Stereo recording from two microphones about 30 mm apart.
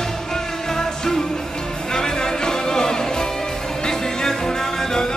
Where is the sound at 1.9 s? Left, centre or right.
Left.